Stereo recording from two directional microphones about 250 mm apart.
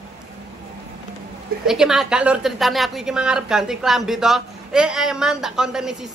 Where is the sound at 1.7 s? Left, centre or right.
Centre.